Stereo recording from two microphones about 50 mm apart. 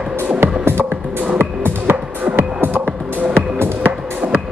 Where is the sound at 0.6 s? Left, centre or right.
Right.